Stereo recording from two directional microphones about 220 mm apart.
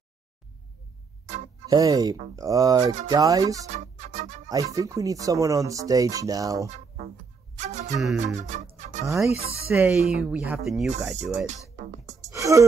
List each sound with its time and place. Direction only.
1.7 s speech: 15° right (ahead or behind)
3.7 s music: 30° right (ahead or behind)
4.5 s speech: 15° right (ahead or behind)
7.5 s speech: 30° right (ahead or behind)
8.0 s speech: centre (ahead or behind)
8.4 s music: 35° right (ahead or behind)
9.0 s speech: 15° right (ahead or behind)
12.3 s a sound: 15° right (ahead or behind)